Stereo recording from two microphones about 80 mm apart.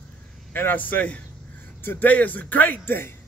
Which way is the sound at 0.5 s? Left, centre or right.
Left.